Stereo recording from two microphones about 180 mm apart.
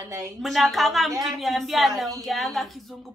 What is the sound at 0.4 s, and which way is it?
A woman's voice, centre (ahead or behind).